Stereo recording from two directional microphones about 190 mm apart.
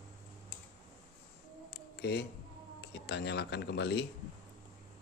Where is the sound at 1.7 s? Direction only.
55° left (ahead or behind).